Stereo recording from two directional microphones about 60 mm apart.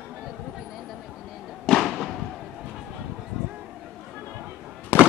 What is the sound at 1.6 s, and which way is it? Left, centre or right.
Fireworks, centre.